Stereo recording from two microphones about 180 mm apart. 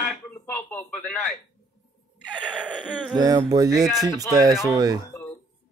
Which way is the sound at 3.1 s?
20° right (ahead or behind).